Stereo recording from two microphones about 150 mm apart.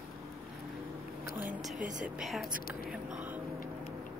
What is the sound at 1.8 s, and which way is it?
Speech, 60° right (ahead or behind).